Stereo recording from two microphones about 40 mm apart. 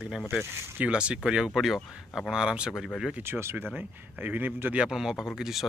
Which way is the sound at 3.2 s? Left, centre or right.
Right.